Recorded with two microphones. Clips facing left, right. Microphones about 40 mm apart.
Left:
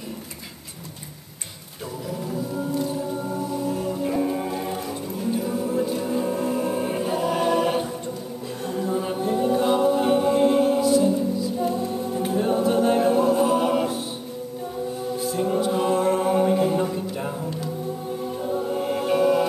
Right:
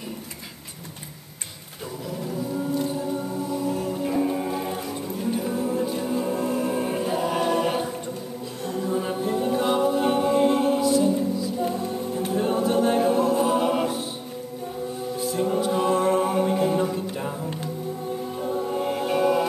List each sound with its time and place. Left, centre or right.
3.6 s music: centre
8.6 s a capella: centre
10.4 s mantra: centre
10.8 s music: left
11.7 s music: centre
12.5 s a capella: centre
15.3 s a capella: centre
18.5 s music: centre